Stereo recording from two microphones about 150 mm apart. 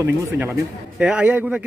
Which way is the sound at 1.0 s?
5° right (ahead or behind).